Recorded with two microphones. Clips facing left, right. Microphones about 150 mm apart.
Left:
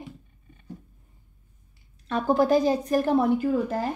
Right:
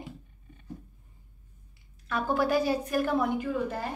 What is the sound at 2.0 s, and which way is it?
A woman's voice, 35° left (ahead or behind).